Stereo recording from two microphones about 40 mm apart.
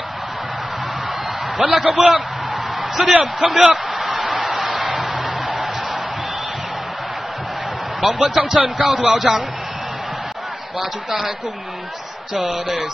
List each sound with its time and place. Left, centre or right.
1.6 s a man's voice: centre
3.7 s a sound: centre
4.3 s music: centre
5.4 s music: centre
8.0 s a man's voice: centre
10.8 s a man's voice: centre
12.4 s a man's voice: centre